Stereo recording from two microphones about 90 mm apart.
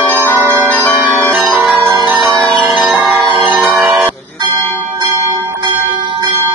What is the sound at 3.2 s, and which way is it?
Music, 65° right (ahead or behind).